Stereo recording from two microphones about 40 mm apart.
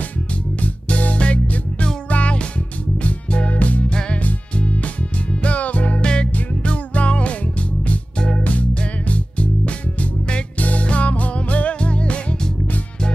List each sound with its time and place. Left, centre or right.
0.6 s music: left
5.9 s music: left
8.5 s music: left